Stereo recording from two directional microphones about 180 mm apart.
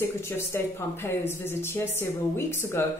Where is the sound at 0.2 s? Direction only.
15° left (ahead or behind).